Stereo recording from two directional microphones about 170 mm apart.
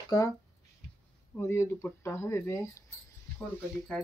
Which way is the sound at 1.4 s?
15° left (ahead or behind).